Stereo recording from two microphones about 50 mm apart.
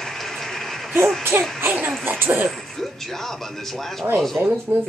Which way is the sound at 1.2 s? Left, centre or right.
Right.